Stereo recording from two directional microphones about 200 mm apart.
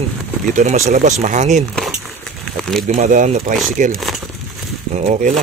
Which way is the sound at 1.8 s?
Centre (ahead or behind).